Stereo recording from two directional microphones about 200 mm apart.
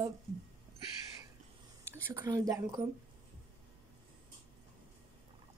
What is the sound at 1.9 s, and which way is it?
Speech, 10° right (ahead or behind).